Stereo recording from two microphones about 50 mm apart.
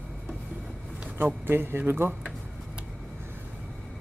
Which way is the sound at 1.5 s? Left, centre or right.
Right.